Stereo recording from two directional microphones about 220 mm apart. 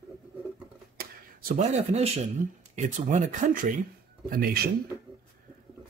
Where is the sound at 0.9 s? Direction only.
40° right (ahead or behind).